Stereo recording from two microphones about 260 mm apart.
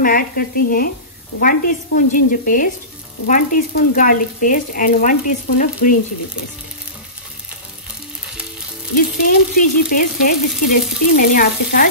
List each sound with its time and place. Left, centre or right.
0.0 s frying: left
5.8 s speech: left
8.9 s frying: left